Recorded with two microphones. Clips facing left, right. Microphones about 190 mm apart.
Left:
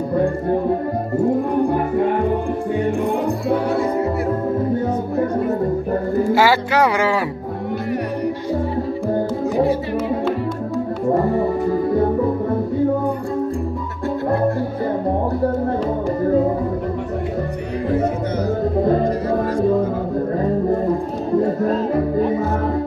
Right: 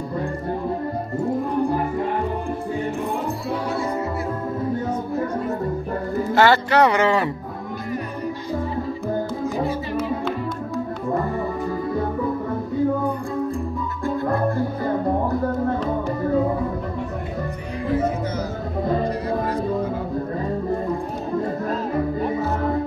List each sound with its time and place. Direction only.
6.3 s speech: 10° left (ahead or behind)
11.1 s music: 35° left (ahead or behind)